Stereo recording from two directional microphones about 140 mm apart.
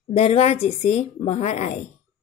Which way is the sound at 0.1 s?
45° left (ahead or behind).